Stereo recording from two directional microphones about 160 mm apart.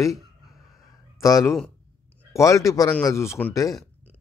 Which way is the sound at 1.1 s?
20° left (ahead or behind).